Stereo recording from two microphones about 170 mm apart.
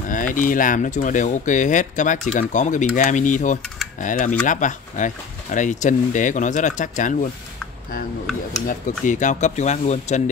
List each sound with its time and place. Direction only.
0.1 s speech: 50° left (ahead or behind)
8.6 s speech: 50° left (ahead or behind)